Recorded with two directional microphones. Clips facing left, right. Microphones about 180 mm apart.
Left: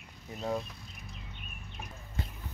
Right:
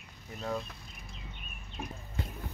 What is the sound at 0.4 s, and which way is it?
Speech, 15° left (ahead or behind).